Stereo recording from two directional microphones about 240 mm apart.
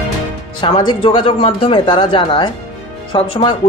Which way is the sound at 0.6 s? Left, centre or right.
Centre.